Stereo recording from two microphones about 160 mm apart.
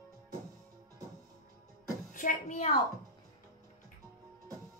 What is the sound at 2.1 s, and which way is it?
Speech, 55° left (ahead or behind).